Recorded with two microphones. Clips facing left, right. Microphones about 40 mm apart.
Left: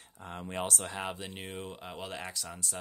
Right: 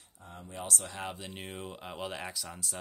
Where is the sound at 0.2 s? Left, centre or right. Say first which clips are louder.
Left 6 dB; left.